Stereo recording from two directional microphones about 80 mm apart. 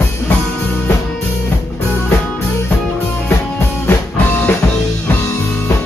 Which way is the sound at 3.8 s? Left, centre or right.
Left.